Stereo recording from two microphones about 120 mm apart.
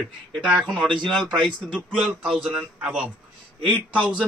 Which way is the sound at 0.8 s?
40° right (ahead or behind).